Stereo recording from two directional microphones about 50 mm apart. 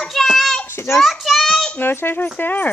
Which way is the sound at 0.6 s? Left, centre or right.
Left.